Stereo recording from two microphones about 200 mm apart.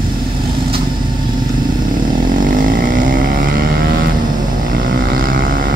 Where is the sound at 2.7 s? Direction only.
50° right (ahead or behind).